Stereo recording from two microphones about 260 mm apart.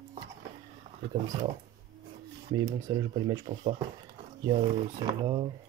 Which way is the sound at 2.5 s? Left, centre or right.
Right.